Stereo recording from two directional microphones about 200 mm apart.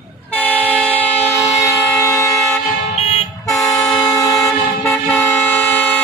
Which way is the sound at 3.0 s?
30° left (ahead or behind).